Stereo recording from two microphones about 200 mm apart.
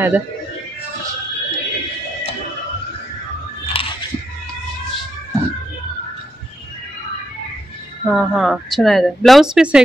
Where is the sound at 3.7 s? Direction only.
25° left (ahead or behind).